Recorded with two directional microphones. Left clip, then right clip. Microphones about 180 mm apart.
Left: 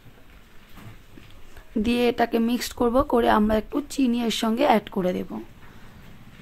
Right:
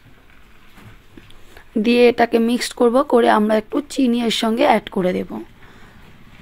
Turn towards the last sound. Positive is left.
turn(degrees=-30)  # may be behind; listen again after turning